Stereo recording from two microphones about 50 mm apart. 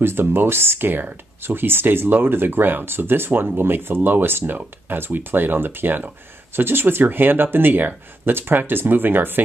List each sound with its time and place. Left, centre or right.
0.0 s speech: right